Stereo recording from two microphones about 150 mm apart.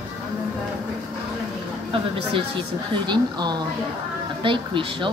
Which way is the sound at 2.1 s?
35° right (ahead or behind).